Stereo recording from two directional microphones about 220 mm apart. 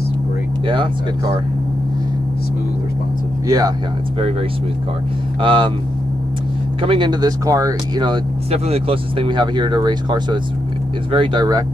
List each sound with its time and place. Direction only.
0.7 s speech: 20° right (ahead or behind)
3.4 s speech: 15° right (ahead or behind)
5.4 s speech: 20° right (ahead or behind)
6.8 s speech: 20° right (ahead or behind)